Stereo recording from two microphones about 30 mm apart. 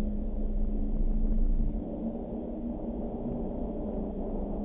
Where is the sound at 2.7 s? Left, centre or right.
Left.